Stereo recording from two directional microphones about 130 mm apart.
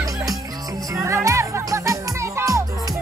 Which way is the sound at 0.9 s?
20° right (ahead or behind).